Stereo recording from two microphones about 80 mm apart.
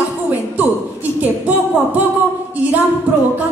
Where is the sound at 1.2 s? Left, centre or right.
Centre.